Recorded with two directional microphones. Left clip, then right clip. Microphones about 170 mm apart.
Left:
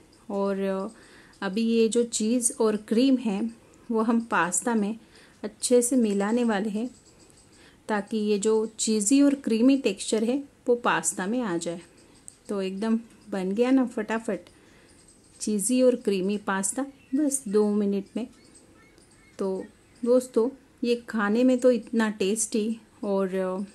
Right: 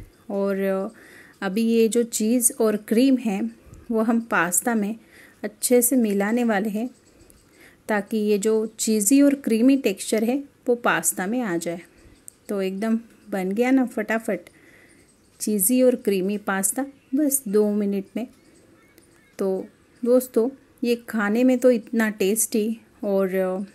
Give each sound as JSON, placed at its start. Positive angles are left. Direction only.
{"t": 0.3, "sound": "speech", "side_deg": -10}
{"t": 19.3, "sound": "speech", "side_deg": -10}